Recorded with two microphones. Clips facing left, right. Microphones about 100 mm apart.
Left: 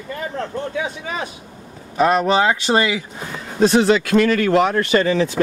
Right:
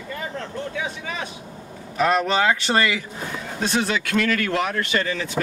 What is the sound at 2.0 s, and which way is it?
Speech, 20° left (ahead or behind).